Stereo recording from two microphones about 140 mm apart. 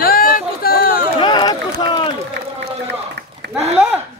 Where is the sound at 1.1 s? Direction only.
35° left (ahead or behind).